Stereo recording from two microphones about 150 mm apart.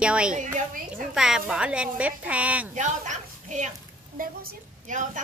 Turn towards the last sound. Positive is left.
turn(degrees=-55)  # may be behind; listen again after turning